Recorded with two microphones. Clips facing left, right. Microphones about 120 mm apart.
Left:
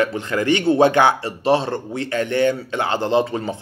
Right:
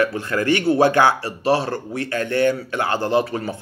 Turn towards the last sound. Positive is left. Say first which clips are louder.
# left 1 dB
turn(degrees=20)  # may be behind; listen again after turning